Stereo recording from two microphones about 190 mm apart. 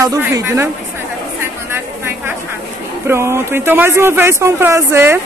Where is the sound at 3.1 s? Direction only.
15° right (ahead or behind).